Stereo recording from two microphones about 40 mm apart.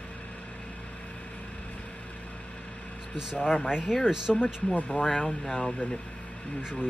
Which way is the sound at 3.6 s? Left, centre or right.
Centre.